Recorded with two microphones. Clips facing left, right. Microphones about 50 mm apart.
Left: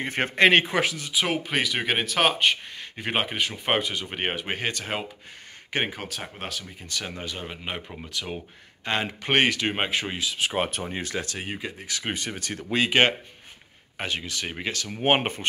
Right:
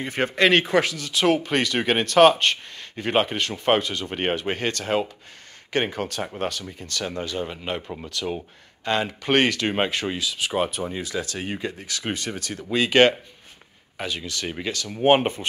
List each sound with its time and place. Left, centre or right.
0.0 s speech: left; by 6.7 s centre
6.8 s speech: centre; by 11.3 s left
11.3 s speech: centre
13.9 s speech: left